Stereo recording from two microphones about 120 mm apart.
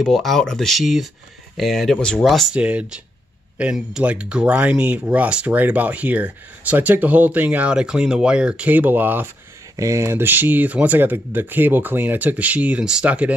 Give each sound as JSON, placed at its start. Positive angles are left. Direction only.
{"t": 0.0, "sound": "speech", "side_deg": 0}
{"t": 2.5, "sound": "speech", "side_deg": -10}